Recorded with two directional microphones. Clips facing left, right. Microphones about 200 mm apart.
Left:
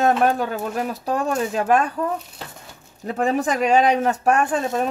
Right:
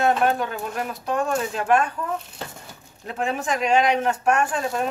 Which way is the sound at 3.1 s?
40° left (ahead or behind).